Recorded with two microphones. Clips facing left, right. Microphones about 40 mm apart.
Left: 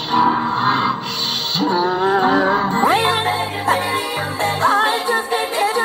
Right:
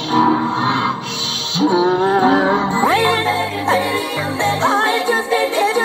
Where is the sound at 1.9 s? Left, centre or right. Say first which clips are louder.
Right 1 dB; left.